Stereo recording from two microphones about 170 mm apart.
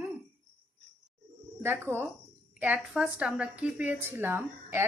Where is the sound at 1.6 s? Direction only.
15° right (ahead or behind).